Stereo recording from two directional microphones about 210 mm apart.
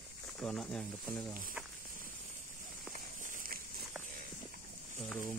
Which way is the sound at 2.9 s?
40° right (ahead or behind).